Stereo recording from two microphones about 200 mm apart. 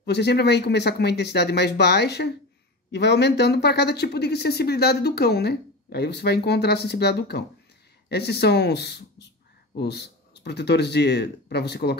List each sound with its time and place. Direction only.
0.0 s speech: 55° left (ahead or behind)